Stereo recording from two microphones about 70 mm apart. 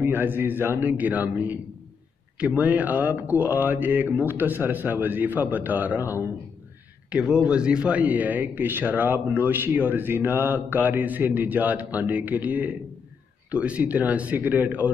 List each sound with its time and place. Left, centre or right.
0.0 s a man's voice: right
7.1 s a man's voice: centre